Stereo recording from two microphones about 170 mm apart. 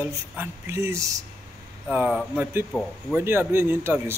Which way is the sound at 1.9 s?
5° right (ahead or behind).